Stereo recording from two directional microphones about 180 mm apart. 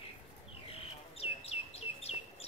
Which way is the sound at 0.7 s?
35° left (ahead or behind).